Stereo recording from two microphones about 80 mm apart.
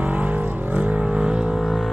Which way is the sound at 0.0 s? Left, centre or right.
Centre.